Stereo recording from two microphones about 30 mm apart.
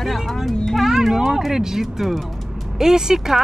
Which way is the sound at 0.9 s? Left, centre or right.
Centre.